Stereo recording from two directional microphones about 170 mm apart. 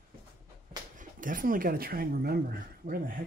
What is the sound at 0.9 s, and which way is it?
Speech, 55° right (ahead or behind).